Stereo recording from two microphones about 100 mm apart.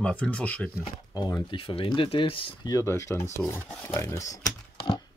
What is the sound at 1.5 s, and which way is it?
Speech, 65° left (ahead or behind).